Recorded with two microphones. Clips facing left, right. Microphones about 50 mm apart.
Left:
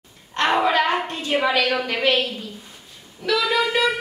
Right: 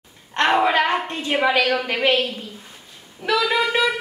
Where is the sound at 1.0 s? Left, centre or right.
Right.